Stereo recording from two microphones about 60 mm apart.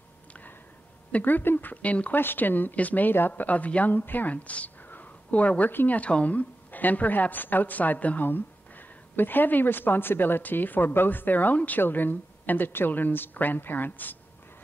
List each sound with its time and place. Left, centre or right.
0.3 s a sound: left
1.1 s speech: left
2.1 s a woman's voice: left